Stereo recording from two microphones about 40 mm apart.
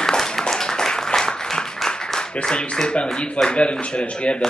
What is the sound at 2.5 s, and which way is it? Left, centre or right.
A man's voice, left.